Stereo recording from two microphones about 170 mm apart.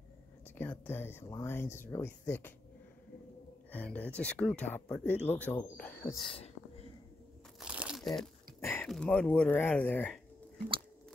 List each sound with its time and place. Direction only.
0.6 s speech: 10° left (ahead or behind)
3.7 s speech: 10° left (ahead or behind)
6.2 s whispering: 35° left (ahead or behind)
7.6 s crumpling: 5° right (ahead or behind)
8.5 s a sound: 15° left (ahead or behind)
8.8 s speech: 5° left (ahead or behind)